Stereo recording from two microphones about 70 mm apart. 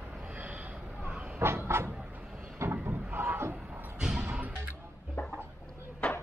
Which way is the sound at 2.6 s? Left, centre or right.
Right.